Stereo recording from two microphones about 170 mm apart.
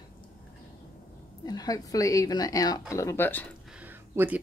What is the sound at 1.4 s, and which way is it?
A woman's voice, 20° left (ahead or behind).